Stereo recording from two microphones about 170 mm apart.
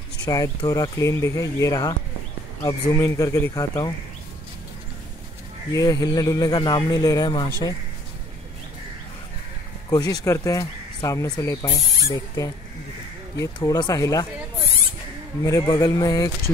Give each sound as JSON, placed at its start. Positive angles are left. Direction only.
{"t": 0.2, "sound": "speech", "side_deg": 20}
{"t": 5.7, "sound": "speech", "side_deg": 20}
{"t": 9.8, "sound": "speech", "side_deg": 20}
{"t": 15.4, "sound": "speech", "side_deg": 20}